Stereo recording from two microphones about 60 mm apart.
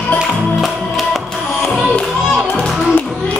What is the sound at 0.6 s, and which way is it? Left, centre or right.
Music, centre.